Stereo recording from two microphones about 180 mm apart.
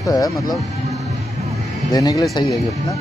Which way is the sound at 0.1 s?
20° left (ahead or behind).